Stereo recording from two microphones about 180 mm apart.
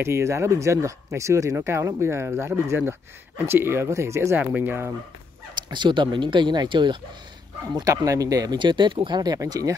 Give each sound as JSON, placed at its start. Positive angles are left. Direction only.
{"t": 0.0, "sound": "speech", "side_deg": -15}
{"t": 5.6, "sound": "speech", "side_deg": -25}